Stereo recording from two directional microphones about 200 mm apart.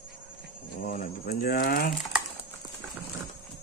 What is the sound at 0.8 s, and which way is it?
Speech, 40° left (ahead or behind).